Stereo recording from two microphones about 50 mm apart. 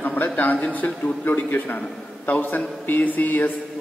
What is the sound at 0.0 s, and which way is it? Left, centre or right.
A man's voice, left.